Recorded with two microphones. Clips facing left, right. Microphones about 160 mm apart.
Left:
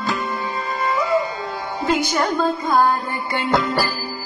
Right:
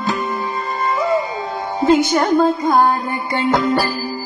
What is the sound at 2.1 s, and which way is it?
Music, 25° right (ahead or behind).